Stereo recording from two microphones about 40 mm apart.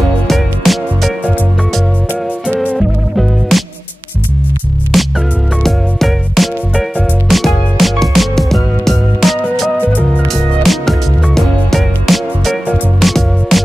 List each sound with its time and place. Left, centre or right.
0.3 s music: centre
2.5 s music: left
3.2 s music: centre
4.9 s music: centre